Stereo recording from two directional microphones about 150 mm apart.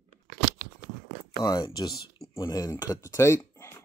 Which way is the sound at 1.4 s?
25° left (ahead or behind).